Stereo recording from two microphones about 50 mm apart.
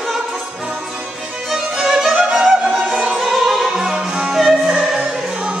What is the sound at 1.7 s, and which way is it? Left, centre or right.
Music, centre.